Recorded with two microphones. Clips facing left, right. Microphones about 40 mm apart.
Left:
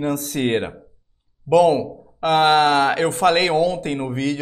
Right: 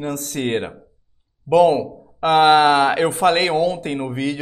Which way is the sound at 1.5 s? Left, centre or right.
Centre.